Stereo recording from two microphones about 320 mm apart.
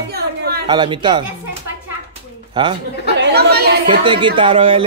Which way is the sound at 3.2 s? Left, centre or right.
Right.